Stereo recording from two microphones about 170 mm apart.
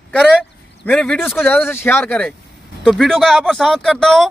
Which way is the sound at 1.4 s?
10° left (ahead or behind).